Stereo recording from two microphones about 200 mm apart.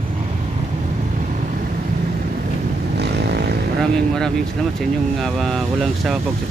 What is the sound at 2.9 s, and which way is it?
Vehicle, 55° right (ahead or behind).